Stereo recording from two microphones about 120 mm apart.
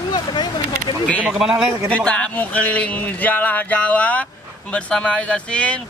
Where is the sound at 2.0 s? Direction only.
10° left (ahead or behind).